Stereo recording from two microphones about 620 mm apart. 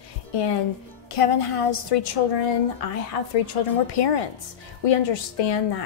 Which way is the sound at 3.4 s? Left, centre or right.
Left.